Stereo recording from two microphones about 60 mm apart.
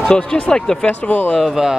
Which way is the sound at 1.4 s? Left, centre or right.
Centre.